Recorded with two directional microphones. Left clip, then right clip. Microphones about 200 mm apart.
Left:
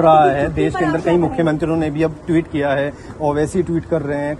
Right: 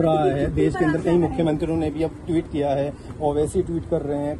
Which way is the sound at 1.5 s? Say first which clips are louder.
Left 5 dB; 90° left.